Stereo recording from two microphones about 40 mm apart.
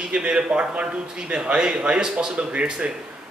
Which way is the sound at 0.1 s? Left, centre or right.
Right.